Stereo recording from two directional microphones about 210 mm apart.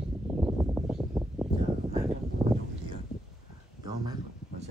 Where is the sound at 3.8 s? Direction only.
20° right (ahead or behind).